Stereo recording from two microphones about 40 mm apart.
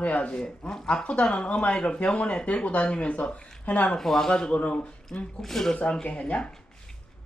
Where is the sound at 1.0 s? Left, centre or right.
Left.